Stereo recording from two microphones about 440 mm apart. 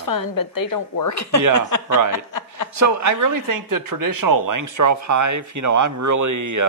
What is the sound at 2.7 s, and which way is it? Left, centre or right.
Speech, right.